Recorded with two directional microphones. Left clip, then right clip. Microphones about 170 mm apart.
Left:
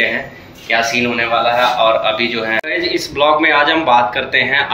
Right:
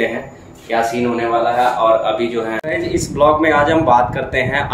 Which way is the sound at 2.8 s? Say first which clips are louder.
Even; 35° right (ahead or behind).